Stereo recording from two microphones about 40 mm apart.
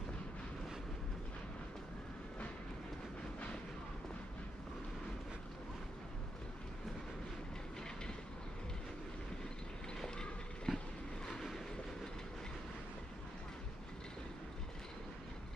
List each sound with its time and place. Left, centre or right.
9.9 s train: centre